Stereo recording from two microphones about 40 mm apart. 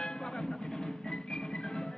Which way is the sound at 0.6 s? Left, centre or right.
Centre.